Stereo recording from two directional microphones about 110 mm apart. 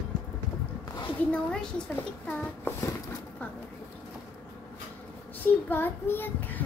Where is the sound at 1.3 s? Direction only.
10° left (ahead or behind).